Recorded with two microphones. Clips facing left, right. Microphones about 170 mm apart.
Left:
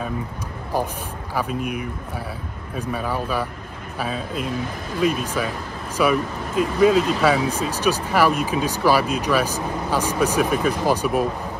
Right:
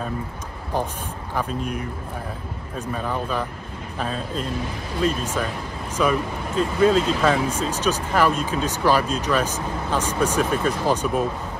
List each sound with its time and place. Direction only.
0.7 s speech: 10° left (ahead or behind)